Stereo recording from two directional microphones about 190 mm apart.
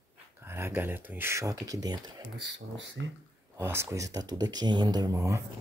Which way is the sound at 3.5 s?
15° right (ahead or behind).